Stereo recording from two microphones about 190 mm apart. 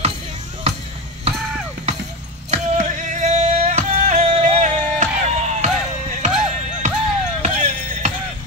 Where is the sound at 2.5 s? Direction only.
40° right (ahead or behind).